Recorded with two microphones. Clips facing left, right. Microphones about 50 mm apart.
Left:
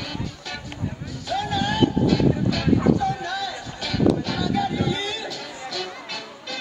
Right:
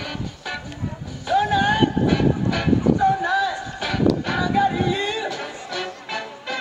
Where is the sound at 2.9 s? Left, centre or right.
Right.